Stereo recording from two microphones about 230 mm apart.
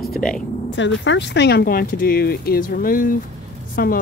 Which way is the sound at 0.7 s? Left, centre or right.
Left.